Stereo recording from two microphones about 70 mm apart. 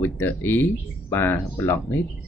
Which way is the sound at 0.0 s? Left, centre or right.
Left.